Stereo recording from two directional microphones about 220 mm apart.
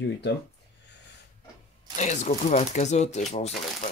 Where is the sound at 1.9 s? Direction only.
35° left (ahead or behind).